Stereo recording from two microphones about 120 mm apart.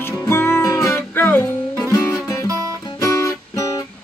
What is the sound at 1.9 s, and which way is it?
Music, 30° left (ahead or behind).